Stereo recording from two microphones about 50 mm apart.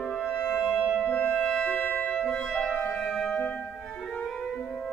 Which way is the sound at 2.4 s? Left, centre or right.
Centre.